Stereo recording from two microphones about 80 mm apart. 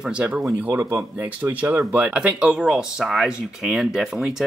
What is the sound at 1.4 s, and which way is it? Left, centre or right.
Speech, right.